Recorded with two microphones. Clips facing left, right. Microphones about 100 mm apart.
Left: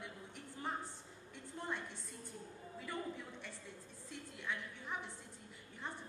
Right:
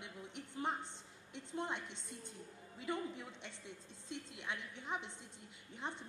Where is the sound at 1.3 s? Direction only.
20° right (ahead or behind).